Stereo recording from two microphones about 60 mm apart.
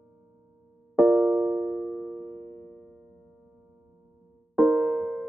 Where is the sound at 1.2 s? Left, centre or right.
Centre.